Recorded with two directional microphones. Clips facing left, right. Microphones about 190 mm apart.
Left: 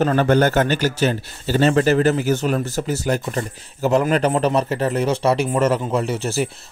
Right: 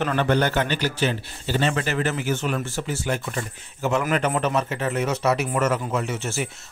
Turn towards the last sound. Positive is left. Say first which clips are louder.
# left 6 dB
turn(degrees=35)  # may be behind; listen again after turning